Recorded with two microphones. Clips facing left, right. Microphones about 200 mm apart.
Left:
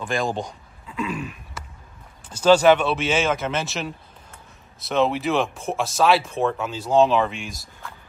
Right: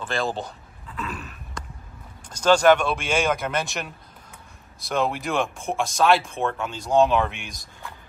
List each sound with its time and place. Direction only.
0.0 s speech: 15° left (ahead or behind)
0.5 s a sound: 10° left (ahead or behind)
2.2 s speech: 10° left (ahead or behind)
4.8 s speech: centre (ahead or behind)